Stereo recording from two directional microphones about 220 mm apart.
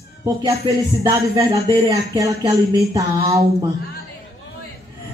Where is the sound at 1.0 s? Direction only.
15° right (ahead or behind).